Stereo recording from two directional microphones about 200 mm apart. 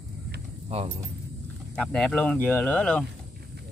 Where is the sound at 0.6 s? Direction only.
30° right (ahead or behind).